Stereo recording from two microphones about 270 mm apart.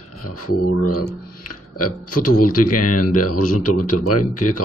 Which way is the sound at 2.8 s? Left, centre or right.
Left.